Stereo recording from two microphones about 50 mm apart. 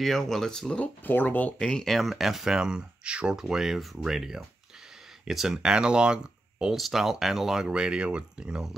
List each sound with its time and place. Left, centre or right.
0.0 s speech: centre
1.0 s speech: left
1.6 s speech: centre
1.9 s speech: centre
6.7 s speech: centre